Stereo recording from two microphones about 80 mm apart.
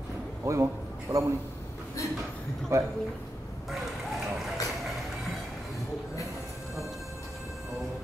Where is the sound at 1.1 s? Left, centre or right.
Right.